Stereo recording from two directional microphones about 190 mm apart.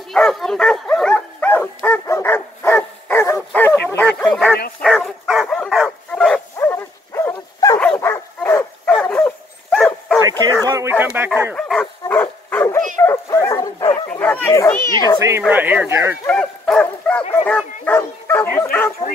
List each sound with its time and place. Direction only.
0.1 s speech: centre (ahead or behind)
4.8 s dog: centre (ahead or behind)
6.6 s dog: 15° left (ahead or behind)
10.6 s speech: 15° right (ahead or behind)
11.5 s dog: 5° left (ahead or behind)
14.1 s speech: 10° left (ahead or behind)
15.2 s speech: 10° right (ahead or behind)
16.3 s dog: 5° left (ahead or behind)
17.5 s bow-wow: 10° left (ahead or behind)